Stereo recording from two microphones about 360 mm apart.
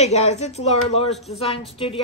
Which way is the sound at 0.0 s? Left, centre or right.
Centre.